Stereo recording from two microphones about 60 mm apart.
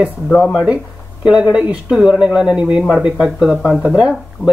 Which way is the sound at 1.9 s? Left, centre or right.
Centre.